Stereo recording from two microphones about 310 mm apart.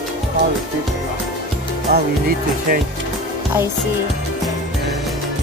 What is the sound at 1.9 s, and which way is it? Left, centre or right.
Music, right.